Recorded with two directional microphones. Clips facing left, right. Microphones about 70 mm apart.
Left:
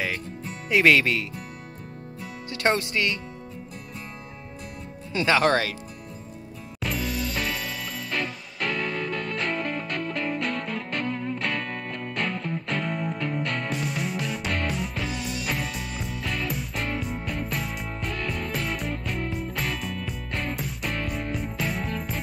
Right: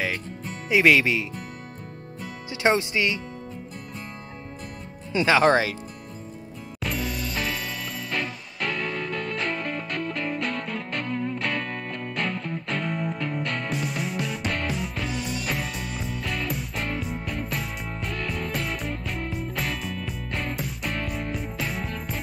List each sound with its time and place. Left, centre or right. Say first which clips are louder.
0.7 s speech: right 1 dB; centre
2.5 s speech: right 2 dB; centre
2.8 s speech: right 1 dB; centre
5.1 s speech: right 2 dB; right
6.8 s music: left 1 dB; centre